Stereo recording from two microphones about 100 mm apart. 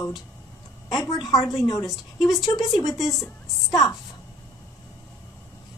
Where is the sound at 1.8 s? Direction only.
Centre (ahead or behind).